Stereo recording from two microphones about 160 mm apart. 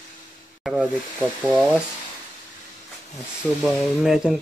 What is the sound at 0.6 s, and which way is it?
Hiss, 5° right (ahead or behind).